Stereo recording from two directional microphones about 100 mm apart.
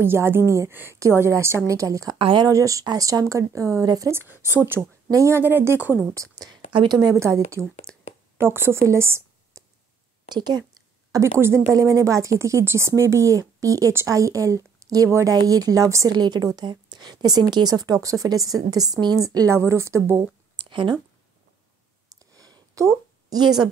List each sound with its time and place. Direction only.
0.0 s speech: 20° right (ahead or behind)
2.1 s speech: 60° right (ahead or behind)
2.4 s speech: 35° right (ahead or behind)
4.1 s speech: 20° right (ahead or behind)
6.1 s speech: 35° right (ahead or behind)
6.7 s a woman's voice: 50° right (ahead or behind)
7.2 s a woman's voice: 30° right (ahead or behind)
10.3 s a woman's voice: 45° right (ahead or behind)
11.3 s speech: 25° right (ahead or behind)
16.1 s speech: 45° right (ahead or behind); by 20.2 s 30° right (ahead or behind)
20.5 s a sound: 55° right (ahead or behind)
22.1 s a sound: 35° right (ahead or behind)